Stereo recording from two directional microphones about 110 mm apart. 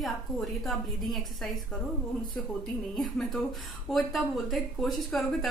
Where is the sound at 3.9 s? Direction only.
Centre (ahead or behind).